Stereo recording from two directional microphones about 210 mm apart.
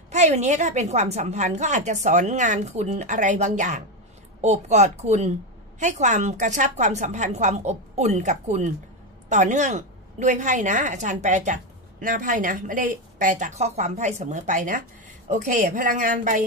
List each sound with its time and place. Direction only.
0.1 s a woman's voice: 35° right (ahead or behind)